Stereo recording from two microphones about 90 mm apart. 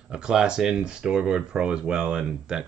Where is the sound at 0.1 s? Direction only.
10° right (ahead or behind).